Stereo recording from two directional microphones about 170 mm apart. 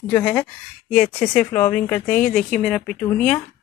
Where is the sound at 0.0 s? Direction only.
5° left (ahead or behind).